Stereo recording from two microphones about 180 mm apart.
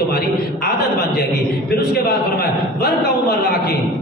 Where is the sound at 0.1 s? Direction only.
60° left (ahead or behind).